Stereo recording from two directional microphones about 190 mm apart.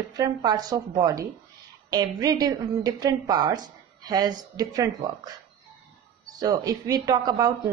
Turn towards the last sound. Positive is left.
turn(degrees=-20)  # may be behind; listen again after turning